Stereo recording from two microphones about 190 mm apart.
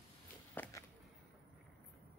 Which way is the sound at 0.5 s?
10° left (ahead or behind).